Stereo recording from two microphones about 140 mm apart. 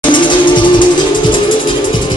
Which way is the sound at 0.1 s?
35° left (ahead or behind).